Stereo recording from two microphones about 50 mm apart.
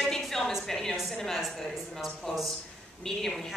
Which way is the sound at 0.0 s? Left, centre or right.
Centre.